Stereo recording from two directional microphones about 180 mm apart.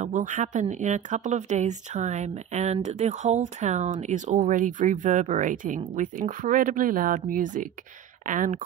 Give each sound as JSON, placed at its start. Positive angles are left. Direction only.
{"t": 0.0, "sound": "speech", "side_deg": -45}